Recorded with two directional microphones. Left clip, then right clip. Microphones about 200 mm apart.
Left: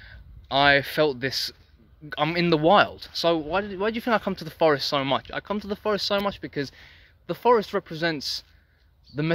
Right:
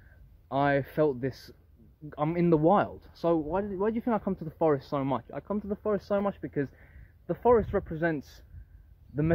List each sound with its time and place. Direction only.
0.5 s speech: 10° left (ahead or behind)
4.0 s speech: 20° left (ahead or behind)
5.4 s speech: 25° left (ahead or behind)
6.0 s speech: 10° left (ahead or behind)